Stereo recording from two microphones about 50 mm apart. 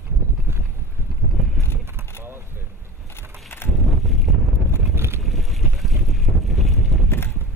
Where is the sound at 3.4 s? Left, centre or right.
Left.